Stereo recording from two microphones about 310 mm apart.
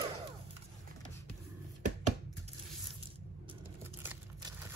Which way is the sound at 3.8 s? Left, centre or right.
Centre.